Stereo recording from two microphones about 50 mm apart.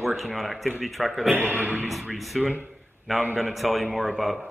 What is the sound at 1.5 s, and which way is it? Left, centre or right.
Speech, right.